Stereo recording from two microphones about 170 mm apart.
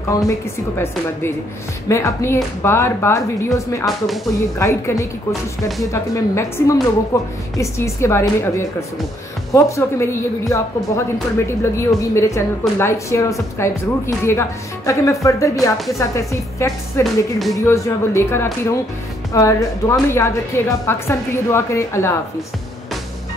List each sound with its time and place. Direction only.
0.1 s a woman's voice: 15° left (ahead or behind)
17.0 s speech: centre (ahead or behind)
17.6 s a woman's voice: 15° left (ahead or behind)